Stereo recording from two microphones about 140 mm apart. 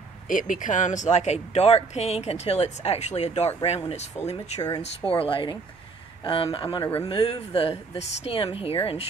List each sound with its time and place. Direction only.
0.3 s speech: 70° left (ahead or behind); by 4.4 s 50° left (ahead or behind)
4.6 s speech: 25° left (ahead or behind)
5.1 s speech: 40° left (ahead or behind)
6.8 s speech: 20° left (ahead or behind)
7.1 s speech: 40° left (ahead or behind)